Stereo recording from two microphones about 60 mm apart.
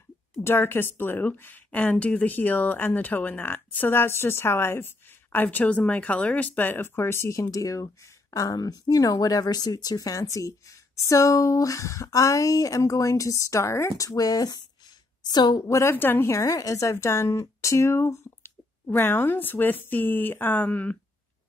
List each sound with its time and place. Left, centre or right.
0.4 s a woman's voice: left
7.3 s speech: left
15.2 s a woman's voice: left
16.3 s speech: left
18.9 s a woman's voice: left